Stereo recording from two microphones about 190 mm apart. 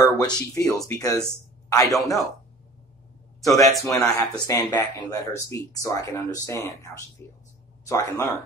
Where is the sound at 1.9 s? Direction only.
Centre (ahead or behind).